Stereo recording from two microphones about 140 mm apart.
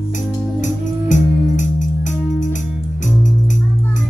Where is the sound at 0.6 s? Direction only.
65° left (ahead or behind).